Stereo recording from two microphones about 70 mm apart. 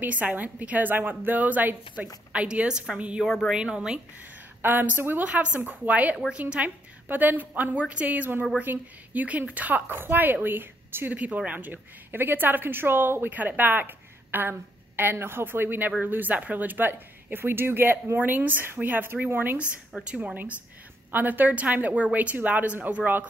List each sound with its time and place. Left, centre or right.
0.0 s a woman's voice: right
4.6 s a woman's voice: right
11.1 s a woman's voice: centre
20.0 s a woman's voice: centre
21.1 s a woman's voice: right